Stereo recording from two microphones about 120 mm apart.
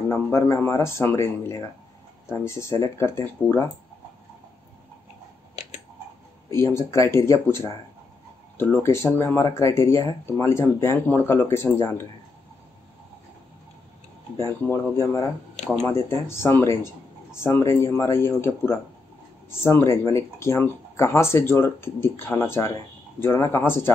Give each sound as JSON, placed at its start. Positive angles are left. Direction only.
{"t": 0.1, "sound": "speech", "side_deg": 20}
{"t": 6.5, "sound": "speech", "side_deg": 20}
{"t": 14.3, "sound": "speech", "side_deg": 25}
{"t": 15.6, "sound": "speech", "side_deg": 0}
{"t": 15.9, "sound": "speech", "side_deg": 20}